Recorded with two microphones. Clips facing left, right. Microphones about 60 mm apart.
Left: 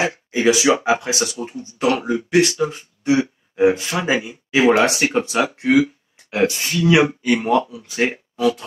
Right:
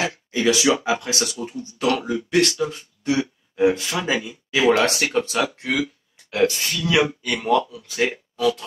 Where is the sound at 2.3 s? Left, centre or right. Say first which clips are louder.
Left 3 dB; centre.